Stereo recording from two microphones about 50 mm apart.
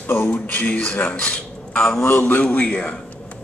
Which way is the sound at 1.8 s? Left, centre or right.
Centre.